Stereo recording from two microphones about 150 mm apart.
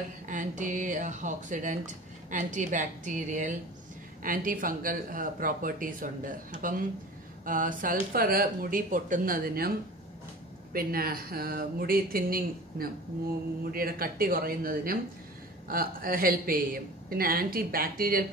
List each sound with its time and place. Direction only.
0.3 s speech: 55° right (ahead or behind)
4.2 s speech: 65° right (ahead or behind)
10.7 s speech: 80° right